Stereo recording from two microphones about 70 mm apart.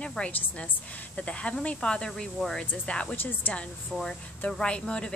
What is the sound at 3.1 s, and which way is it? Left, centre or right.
Speech, left.